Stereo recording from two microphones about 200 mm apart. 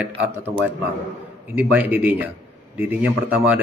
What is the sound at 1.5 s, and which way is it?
Speech, 5° right (ahead or behind).